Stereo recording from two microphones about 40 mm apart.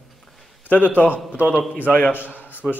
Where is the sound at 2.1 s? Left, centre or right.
Right.